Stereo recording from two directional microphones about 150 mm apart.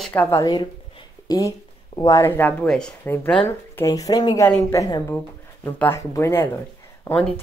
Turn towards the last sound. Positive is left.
turn(degrees=10)  # may be behind; listen again after turning